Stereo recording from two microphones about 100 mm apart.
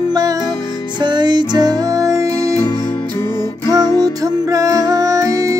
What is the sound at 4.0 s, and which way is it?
Music, 35° right (ahead or behind).